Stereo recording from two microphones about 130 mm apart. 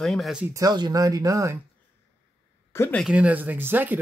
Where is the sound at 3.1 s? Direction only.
10° right (ahead or behind).